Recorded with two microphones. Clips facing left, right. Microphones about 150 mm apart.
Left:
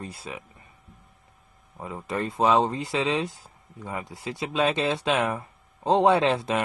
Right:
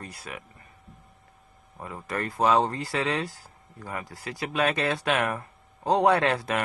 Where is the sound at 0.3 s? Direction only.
25° left (ahead or behind).